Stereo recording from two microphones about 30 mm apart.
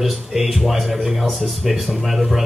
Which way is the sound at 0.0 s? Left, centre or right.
Centre.